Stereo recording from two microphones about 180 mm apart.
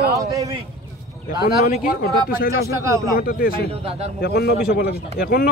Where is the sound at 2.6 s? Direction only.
15° right (ahead or behind).